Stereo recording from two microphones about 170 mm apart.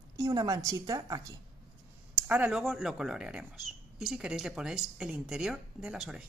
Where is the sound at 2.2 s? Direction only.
10° right (ahead or behind).